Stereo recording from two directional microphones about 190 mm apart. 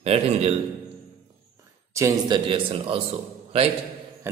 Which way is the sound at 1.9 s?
15° right (ahead or behind).